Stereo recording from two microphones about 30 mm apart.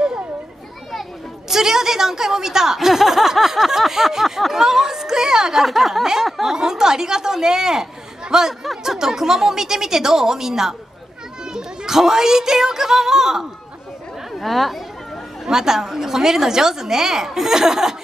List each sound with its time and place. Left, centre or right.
1.5 s a woman's voice: centre
5.7 s a woman's voice: centre
6.4 s a woman's voice: centre
14.4 s speech: centre
15.4 s a woman's voice: centre